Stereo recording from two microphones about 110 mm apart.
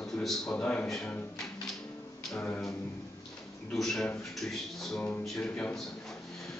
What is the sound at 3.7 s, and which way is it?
A man's voice, 5° left (ahead or behind).